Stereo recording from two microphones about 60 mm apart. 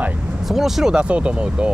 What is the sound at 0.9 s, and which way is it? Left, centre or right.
Speech, centre.